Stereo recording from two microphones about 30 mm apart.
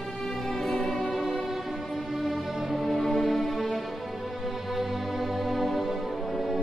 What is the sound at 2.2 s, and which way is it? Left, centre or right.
Music, centre.